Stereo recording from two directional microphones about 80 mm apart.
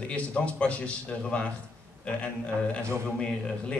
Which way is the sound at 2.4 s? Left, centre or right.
Centre.